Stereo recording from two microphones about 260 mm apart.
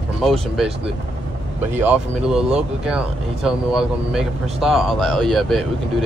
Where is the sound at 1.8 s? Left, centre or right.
Centre.